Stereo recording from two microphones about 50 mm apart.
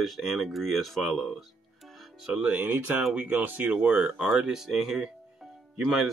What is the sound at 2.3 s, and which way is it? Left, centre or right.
Speech, right.